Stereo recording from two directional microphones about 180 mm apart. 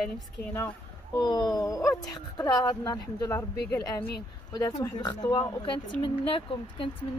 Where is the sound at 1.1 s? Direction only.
20° left (ahead or behind).